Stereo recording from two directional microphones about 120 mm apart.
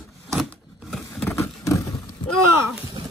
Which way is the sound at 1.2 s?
25° left (ahead or behind).